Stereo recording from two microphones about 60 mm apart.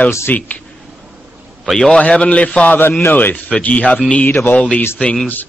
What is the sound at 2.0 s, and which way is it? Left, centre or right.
A man's voice, left.